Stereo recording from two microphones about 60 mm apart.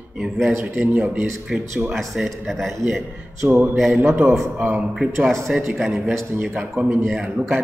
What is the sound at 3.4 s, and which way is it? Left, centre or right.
Speech, right.